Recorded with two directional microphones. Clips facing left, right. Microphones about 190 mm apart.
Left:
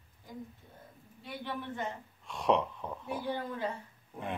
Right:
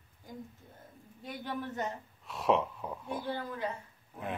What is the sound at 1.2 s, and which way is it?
Speech, 40° right (ahead or behind).